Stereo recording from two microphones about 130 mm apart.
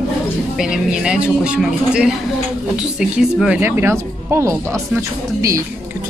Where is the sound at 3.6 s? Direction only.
15° right (ahead or behind).